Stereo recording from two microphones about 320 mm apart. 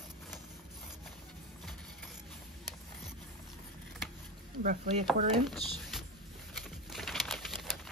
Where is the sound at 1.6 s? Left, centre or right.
Centre.